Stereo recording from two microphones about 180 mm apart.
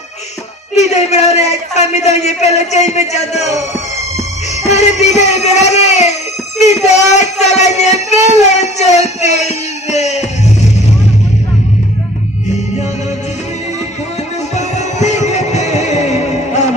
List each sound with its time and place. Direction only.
0.7 s speech: 40° left (ahead or behind)
4.6 s speech: 40° left (ahead or behind)
14.5 s music: 40° left (ahead or behind)